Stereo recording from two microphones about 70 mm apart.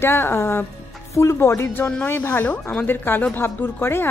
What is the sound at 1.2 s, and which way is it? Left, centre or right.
A woman's voice, left.